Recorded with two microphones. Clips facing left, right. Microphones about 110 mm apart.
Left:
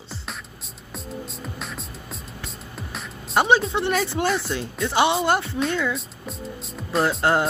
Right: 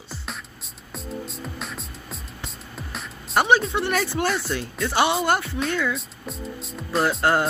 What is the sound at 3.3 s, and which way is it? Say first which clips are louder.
Speech: even; 25° left (ahead or behind).